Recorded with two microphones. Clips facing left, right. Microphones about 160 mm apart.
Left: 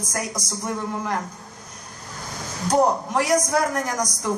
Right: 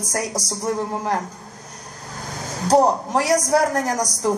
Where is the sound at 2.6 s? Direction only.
35° right (ahead or behind).